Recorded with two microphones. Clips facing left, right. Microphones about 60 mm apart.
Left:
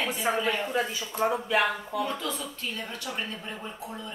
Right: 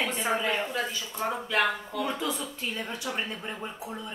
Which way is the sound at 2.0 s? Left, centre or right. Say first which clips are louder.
Right 2 dB; centre.